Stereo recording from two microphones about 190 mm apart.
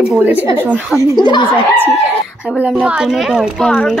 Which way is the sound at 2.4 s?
5° right (ahead or behind).